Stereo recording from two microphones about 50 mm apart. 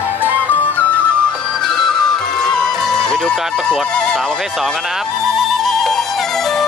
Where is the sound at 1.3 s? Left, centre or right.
Centre.